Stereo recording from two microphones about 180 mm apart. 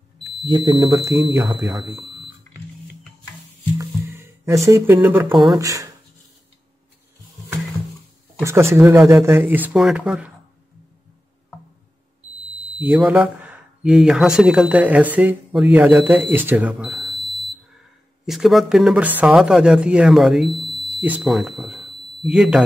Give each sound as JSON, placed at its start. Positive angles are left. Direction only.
{"t": 0.5, "sound": "speech", "side_deg": -25}
{"t": 1.6, "sound": "speech", "side_deg": 0}
{"t": 3.7, "sound": "music", "side_deg": -15}
{"t": 4.6, "sound": "speech", "side_deg": -15}
{"t": 8.4, "sound": "speech", "side_deg": -15}
{"t": 12.8, "sound": "speech", "side_deg": -10}